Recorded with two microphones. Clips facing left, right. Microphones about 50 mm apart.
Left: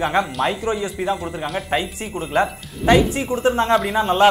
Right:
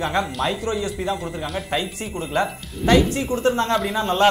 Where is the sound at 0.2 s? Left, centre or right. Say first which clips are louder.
Left 2 dB; centre.